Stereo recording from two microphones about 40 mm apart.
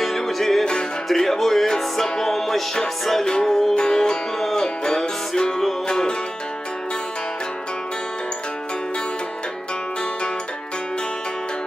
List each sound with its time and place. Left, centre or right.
0.0 s music: centre